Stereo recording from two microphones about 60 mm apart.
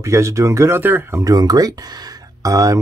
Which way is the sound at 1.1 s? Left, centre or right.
Right.